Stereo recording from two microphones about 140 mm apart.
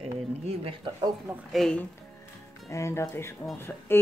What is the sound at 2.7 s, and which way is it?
Speech, 20° left (ahead or behind).